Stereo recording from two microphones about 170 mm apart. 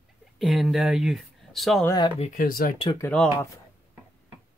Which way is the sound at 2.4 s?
60° left (ahead or behind).